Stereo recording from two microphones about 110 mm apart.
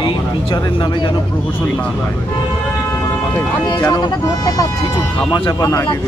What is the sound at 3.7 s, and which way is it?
Speech, 30° left (ahead or behind).